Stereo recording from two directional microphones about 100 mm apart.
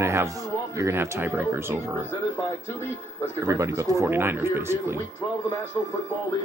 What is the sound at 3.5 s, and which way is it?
Speech, 30° right (ahead or behind).